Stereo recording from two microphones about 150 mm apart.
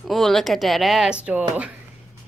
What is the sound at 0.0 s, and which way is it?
Speech, centre (ahead or behind).